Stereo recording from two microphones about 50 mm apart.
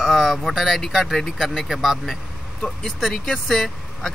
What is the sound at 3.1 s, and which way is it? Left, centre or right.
Speech, centre.